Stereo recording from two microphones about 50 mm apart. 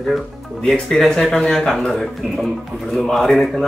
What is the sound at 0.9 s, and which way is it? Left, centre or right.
Speech, centre.